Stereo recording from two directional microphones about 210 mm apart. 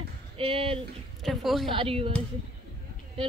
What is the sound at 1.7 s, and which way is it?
Speech, 25° right (ahead or behind).